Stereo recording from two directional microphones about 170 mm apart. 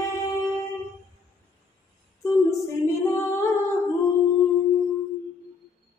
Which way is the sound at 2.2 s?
15° left (ahead or behind).